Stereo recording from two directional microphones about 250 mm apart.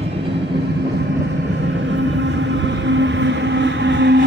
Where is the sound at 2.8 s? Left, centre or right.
Right.